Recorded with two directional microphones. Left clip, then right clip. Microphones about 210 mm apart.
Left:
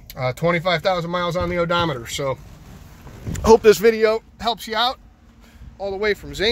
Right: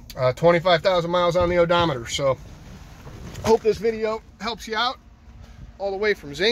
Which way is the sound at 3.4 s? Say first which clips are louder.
Left 7 dB; 40° left (ahead or behind).